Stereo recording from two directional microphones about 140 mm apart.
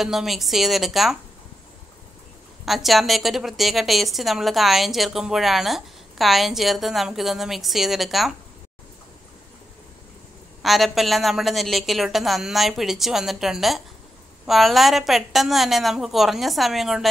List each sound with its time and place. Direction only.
0.0 s a woman's voice: centre (ahead or behind)
2.6 s a woman's voice: centre (ahead or behind)
10.6 s a woman's voice: centre (ahead or behind)